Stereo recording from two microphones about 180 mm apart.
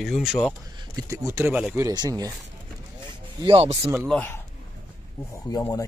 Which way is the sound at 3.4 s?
30° right (ahead or behind).